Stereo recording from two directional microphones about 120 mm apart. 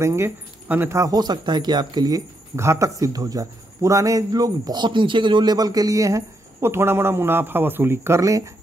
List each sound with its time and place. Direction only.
0.0 s speech: 25° right (ahead or behind)